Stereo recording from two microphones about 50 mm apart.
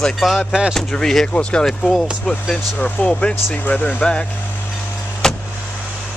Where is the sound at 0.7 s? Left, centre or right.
Centre.